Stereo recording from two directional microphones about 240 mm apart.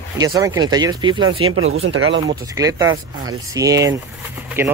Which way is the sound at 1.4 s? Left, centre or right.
Right.